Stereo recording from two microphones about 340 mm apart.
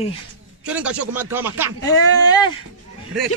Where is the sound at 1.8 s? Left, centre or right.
Centre.